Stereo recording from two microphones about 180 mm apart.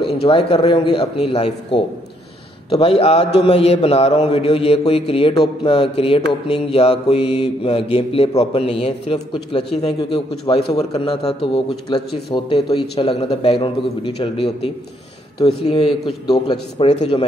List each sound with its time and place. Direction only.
0.0 s mantra: 35° left (ahead or behind)
9.9 s a man's voice: 25° left (ahead or behind)
15.3 s mantra: 30° left (ahead or behind)